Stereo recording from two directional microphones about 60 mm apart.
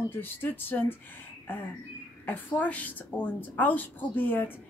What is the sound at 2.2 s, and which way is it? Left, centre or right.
Speech, left.